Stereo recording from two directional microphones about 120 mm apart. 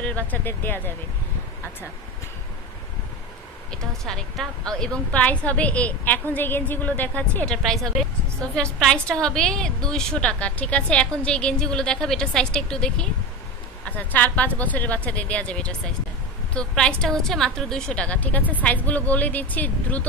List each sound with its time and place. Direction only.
0.0 s a woman's voice: 15° left (ahead or behind)
3.7 s a woman's voice: 5° left (ahead or behind)